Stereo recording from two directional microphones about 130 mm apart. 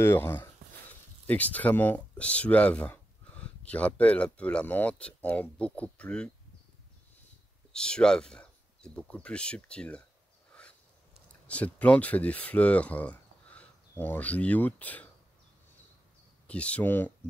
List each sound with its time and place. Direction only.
0.0 s speech: 20° left (ahead or behind)
7.7 s speech: 5° left (ahead or behind)
10.5 s a sound: 10° left (ahead or behind)
11.4 s speech: 10° left (ahead or behind)
16.4 s speech: 10° left (ahead or behind)